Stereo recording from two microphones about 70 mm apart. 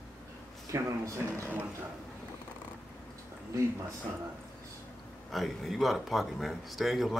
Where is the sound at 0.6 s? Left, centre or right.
Right.